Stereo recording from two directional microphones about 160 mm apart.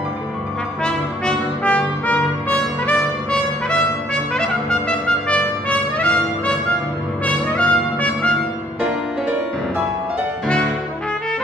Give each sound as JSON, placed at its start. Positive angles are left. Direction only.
{"t": 0.8, "sound": "brass instrument", "side_deg": 5}
{"t": 7.2, "sound": "trumpet", "side_deg": 10}